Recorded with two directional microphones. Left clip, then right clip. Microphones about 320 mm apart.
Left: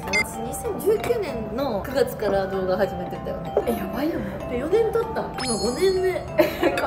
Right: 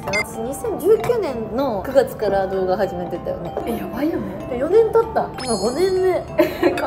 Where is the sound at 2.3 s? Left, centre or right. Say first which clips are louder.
Right 4 dB; centre.